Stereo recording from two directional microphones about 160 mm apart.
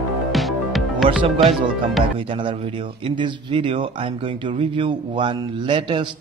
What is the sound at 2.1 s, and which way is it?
Speech, 35° right (ahead or behind).